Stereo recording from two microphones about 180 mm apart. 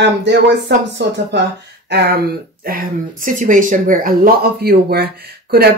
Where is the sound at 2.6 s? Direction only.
55° right (ahead or behind).